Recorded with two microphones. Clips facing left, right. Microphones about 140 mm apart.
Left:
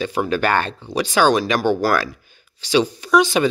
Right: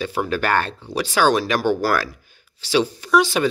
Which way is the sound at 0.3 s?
5° right (ahead or behind).